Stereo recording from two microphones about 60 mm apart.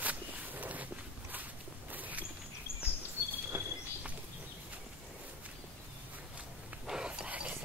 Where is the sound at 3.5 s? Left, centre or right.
Right.